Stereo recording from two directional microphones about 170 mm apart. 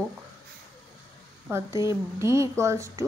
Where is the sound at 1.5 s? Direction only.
15° right (ahead or behind).